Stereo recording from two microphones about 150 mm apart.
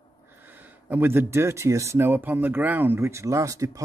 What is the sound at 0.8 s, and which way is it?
Speech, 15° right (ahead or behind).